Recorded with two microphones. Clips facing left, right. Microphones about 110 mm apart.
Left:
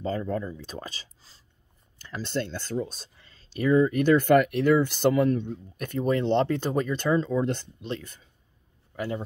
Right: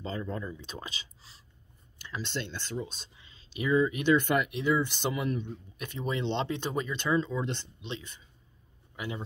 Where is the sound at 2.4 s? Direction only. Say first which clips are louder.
Left 6 dB; 45° left (ahead or behind).